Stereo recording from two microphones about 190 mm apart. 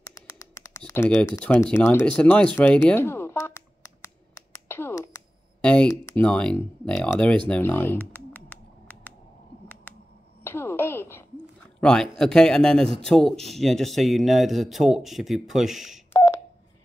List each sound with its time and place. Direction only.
0.1 s typing: 15° left (ahead or behind)
1.2 s a sound: 10° left (ahead or behind)
5.9 s speech: 10° left (ahead or behind)
10.4 s a sound: 15° left (ahead or behind)
11.8 s speech: 5° left (ahead or behind)
16.1 s telephone dialing: 15° left (ahead or behind)